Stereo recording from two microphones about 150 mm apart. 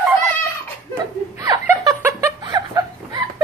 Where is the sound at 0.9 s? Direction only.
20° right (ahead or behind).